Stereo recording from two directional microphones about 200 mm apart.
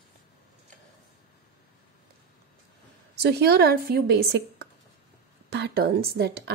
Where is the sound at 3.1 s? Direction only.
50° right (ahead or behind).